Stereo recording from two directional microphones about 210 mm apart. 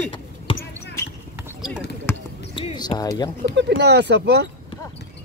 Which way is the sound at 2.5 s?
20° left (ahead or behind).